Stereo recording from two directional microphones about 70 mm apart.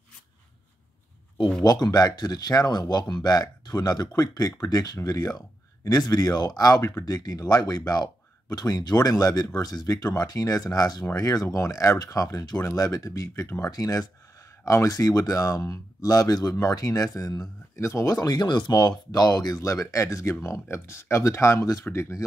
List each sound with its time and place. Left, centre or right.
1.6 s speech: left
7.1 s speech: left
17.7 s speech: left
18.2 s speech: left